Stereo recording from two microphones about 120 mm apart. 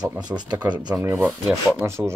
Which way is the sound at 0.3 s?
35° right (ahead or behind).